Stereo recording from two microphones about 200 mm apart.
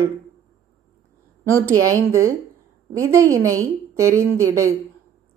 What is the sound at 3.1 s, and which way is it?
Speech, 15° right (ahead or behind).